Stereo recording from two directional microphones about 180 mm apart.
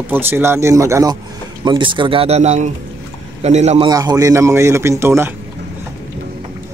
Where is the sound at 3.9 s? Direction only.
20° right (ahead or behind).